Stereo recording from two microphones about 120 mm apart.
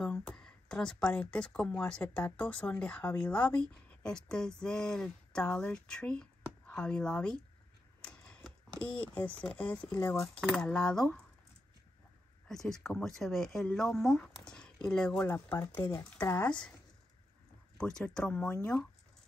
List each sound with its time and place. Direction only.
0.0 s speech: 5° left (ahead or behind)
8.0 s typewriter: 5° left (ahead or behind)
9.0 s speech: 10° left (ahead or behind)
12.4 s speech: 5° left (ahead or behind)
17.7 s speech: 5° left (ahead or behind)